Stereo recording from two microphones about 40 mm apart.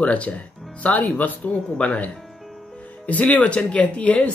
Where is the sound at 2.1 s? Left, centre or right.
Centre.